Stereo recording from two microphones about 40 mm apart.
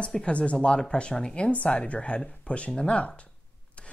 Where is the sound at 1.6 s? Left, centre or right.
Left.